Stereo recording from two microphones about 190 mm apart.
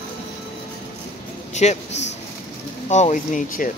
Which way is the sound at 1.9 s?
65° left (ahead or behind).